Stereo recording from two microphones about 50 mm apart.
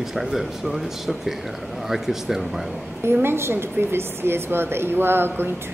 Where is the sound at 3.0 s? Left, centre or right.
Right.